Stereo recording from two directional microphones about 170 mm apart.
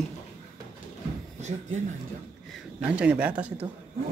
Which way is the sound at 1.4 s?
45° right (ahead or behind).